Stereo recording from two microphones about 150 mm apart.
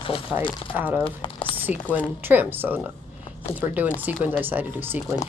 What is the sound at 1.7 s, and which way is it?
Speech, 10° right (ahead or behind).